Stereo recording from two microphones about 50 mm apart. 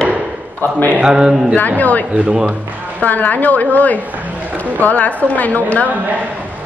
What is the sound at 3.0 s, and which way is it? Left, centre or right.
A woman's voice, left.